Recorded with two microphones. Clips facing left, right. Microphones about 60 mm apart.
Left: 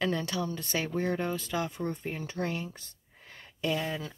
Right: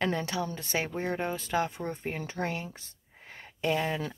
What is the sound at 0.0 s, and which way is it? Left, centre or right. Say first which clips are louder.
Speech: even; right.